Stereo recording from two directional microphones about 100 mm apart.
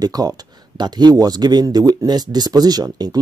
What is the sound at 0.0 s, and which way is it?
Speech, 40° right (ahead or behind).